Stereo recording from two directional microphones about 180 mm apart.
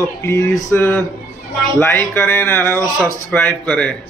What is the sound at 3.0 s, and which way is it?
Speech, 5° left (ahead or behind).